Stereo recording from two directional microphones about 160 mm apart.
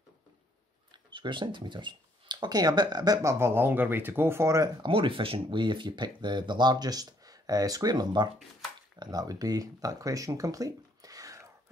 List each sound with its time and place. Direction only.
0.9 s speech: 30° right (ahead or behind)
4.8 s speech: 30° right (ahead or behind)